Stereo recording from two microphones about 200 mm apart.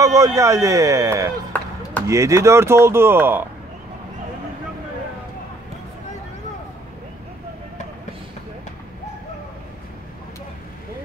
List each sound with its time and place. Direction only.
0.0 s speech: 15° right (ahead or behind)
1.5 s chop: 5° left (ahead or behind)
2.0 s speech: 15° right (ahead or behind)